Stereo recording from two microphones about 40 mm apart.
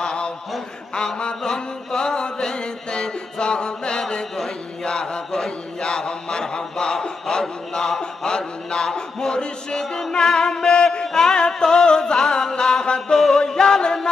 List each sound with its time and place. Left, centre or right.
0.0 s a sound: left
0.9 s mantra: centre
10.1 s music: centre